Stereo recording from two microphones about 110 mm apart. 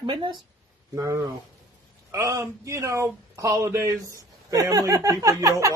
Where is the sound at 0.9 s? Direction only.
30° right (ahead or behind).